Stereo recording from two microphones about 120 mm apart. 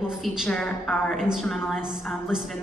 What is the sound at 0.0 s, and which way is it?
A woman's voice, 5° right (ahead or behind).